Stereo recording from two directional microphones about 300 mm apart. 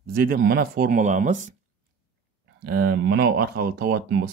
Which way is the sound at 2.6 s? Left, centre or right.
Right.